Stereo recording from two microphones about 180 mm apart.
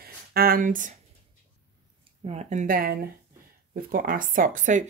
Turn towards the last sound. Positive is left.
turn(degrees=-45)  # may be behind; listen again after turning